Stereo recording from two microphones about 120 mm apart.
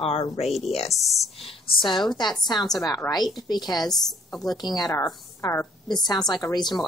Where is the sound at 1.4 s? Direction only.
45° left (ahead or behind).